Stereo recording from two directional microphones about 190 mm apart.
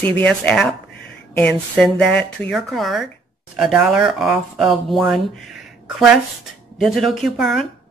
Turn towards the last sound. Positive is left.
turn(degrees=0)  # may be behind; listen again after turning